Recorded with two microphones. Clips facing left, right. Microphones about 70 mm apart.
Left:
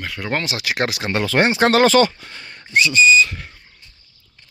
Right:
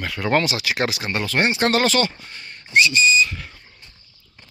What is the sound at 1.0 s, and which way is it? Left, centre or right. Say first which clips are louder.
Speech: left 4 dB; left.